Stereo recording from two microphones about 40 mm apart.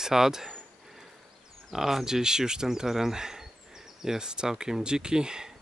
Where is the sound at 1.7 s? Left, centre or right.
Centre.